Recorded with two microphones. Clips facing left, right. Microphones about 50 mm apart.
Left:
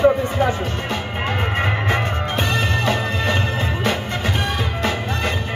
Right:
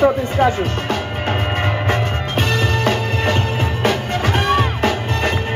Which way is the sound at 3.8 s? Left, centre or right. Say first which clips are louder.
Right 6 dB; right.